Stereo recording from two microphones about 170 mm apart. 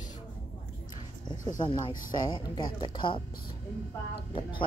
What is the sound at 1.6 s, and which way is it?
A woman's voice, 25° left (ahead or behind).